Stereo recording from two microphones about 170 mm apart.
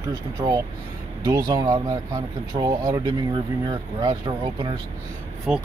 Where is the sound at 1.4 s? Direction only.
20° right (ahead or behind).